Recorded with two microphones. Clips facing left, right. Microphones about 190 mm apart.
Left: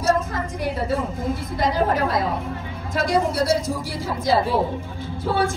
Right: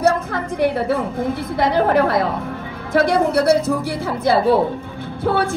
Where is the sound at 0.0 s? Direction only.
65° right (ahead or behind).